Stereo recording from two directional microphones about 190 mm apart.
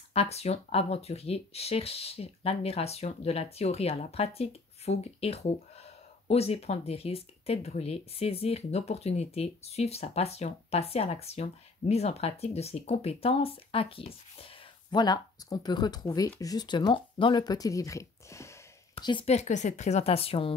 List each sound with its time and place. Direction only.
0.1 s speech: 30° left (ahead or behind)